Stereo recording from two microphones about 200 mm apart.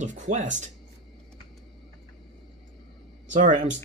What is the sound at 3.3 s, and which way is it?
Speech, 40° right (ahead or behind).